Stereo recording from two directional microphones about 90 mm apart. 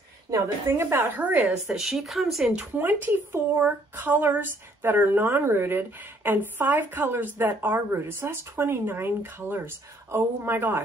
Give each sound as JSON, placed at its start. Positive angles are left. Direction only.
{"t": 0.3, "sound": "speech", "side_deg": -30}
{"t": 1.4, "sound": "speech", "side_deg": -5}
{"t": 2.7, "sound": "speech", "side_deg": -20}